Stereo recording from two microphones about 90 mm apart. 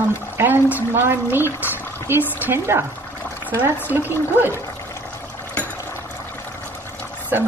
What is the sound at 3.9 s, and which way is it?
Speech, 20° right (ahead or behind).